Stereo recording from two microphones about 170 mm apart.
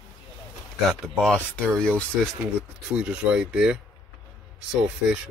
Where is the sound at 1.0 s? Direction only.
5° left (ahead or behind).